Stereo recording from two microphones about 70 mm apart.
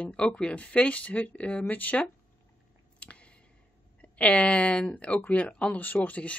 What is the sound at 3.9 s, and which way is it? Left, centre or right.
Speech, centre.